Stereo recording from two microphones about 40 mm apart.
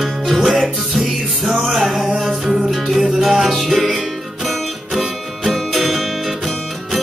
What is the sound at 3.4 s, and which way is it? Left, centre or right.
Music, centre.